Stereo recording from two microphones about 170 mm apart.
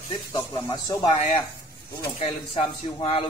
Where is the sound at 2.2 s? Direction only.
30° left (ahead or behind).